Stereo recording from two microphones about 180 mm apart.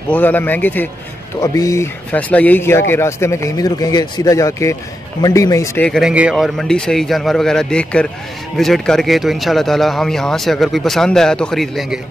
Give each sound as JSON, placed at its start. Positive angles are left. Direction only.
{"t": 0.1, "sound": "speech", "side_deg": 10}
{"t": 5.9, "sound": "a man's voice", "side_deg": 0}